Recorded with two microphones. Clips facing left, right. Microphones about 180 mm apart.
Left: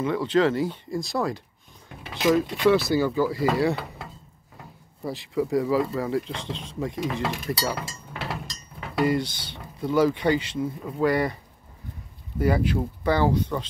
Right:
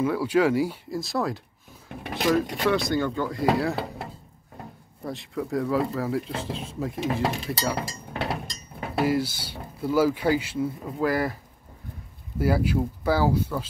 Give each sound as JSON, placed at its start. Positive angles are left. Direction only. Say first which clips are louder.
{"t": 0.0, "sound": "speech", "louder": "even", "side_deg": -10}
{"t": 5.0, "sound": "speech", "louder": "left 4 dB", "side_deg": 0}
{"t": 7.1, "sound": "dishes", "louder": "right 2 dB", "side_deg": -35}
{"t": 8.3, "sound": "a sound", "louder": "right 3 dB", "side_deg": -25}
{"t": 9.0, "sound": "speech", "louder": "left 1 dB", "side_deg": -5}
{"t": 12.4, "sound": "speech", "louder": "even", "side_deg": -5}